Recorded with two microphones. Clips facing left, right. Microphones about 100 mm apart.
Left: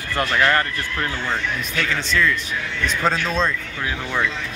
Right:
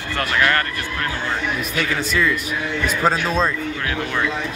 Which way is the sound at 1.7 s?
10° right (ahead or behind).